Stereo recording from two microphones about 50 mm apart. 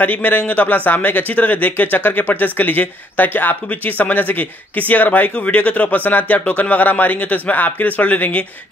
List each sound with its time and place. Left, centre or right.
0.0 s a man's voice: left